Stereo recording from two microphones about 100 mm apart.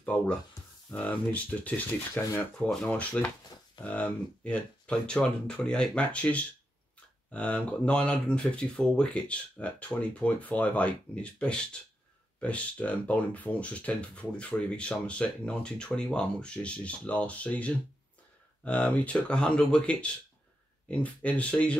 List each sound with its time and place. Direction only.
0.0 s speech: 15° left (ahead or behind)
2.6 s speech: 10° left (ahead or behind)